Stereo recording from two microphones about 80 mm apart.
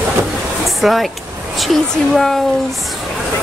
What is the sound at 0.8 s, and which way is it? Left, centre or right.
Speech, centre.